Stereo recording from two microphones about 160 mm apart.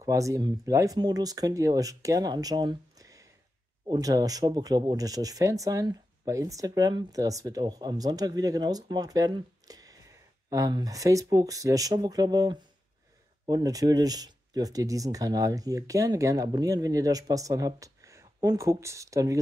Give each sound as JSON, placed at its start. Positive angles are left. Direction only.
{"t": 0.0, "sound": "speech", "side_deg": -20}